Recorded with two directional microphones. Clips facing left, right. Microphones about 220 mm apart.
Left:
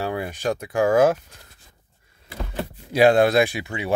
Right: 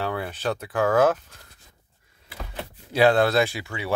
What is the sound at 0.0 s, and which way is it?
Speech, 15° left (ahead or behind).